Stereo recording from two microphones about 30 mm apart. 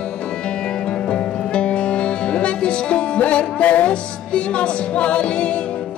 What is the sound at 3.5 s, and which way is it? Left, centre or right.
Music, left.